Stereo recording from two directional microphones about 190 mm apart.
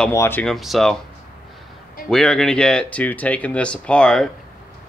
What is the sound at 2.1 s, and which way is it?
Speech, 5° left (ahead or behind).